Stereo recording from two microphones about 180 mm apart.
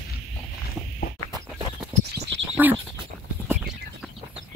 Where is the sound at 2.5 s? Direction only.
10° right (ahead or behind).